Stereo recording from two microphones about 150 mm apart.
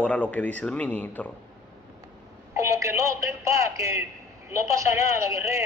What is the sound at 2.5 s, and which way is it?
A man's voice, 20° right (ahead or behind).